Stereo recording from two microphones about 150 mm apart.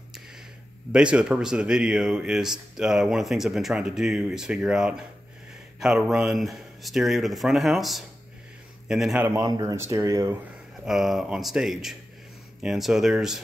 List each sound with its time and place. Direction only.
0.9 s speech: 5° right (ahead or behind)
9.6 s speech: 20° right (ahead or behind)
10.9 s speech: centre (ahead or behind)